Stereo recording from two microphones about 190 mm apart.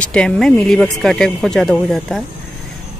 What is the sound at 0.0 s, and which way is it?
Speech, 5° left (ahead or behind).